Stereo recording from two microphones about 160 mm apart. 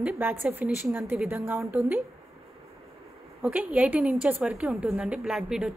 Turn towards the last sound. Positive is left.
turn(degrees=-5)  # may be behind; listen again after turning